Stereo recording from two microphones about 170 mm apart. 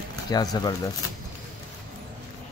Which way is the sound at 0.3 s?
25° left (ahead or behind).